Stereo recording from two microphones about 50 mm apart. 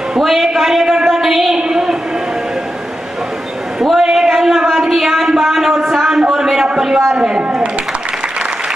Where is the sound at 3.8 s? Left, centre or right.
Centre; by 7.8 s right.